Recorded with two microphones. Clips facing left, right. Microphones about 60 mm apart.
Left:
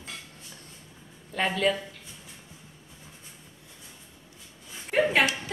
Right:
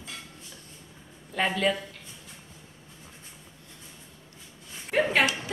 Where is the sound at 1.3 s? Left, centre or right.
Centre.